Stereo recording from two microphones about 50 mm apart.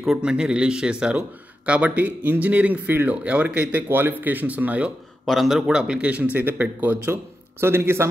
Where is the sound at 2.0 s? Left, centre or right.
Right.